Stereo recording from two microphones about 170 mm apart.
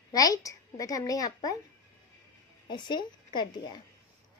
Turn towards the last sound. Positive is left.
turn(degrees=25)  # may be behind; listen again after turning